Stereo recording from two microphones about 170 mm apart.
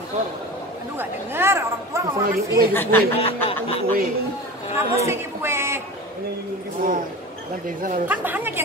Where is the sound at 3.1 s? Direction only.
35° left (ahead or behind).